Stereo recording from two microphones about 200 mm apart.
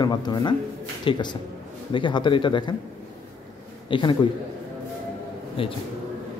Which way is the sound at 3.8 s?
25° left (ahead or behind).